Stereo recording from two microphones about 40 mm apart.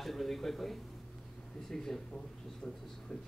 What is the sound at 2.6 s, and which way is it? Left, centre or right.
Speech, left.